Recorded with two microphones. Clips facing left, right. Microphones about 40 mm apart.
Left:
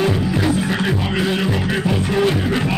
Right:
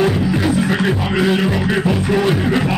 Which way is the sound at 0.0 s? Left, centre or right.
Centre.